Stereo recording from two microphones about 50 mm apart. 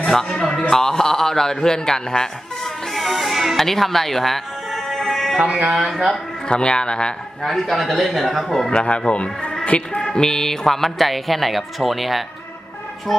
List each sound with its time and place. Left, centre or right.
0.1 s speech: centre
2.9 s music: centre
5.5 s speech: right
6.5 s speech: centre
7.4 s speech: centre
8.6 s speech: centre